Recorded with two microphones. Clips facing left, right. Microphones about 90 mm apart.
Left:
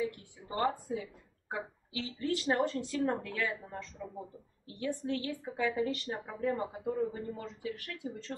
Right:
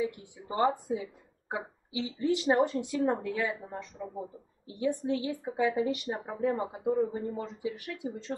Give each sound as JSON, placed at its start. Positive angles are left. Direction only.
{"t": 0.0, "sound": "speech", "side_deg": -20}